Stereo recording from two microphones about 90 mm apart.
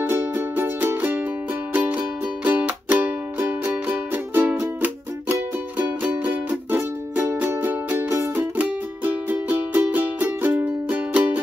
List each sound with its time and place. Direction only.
0.1 s music: 25° right (ahead or behind)